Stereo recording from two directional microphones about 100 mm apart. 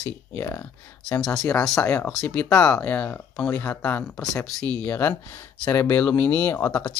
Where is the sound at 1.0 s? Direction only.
5° left (ahead or behind).